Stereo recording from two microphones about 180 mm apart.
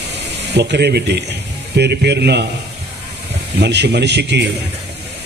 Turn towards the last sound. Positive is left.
turn(degrees=-70)  # may be behind; listen again after turning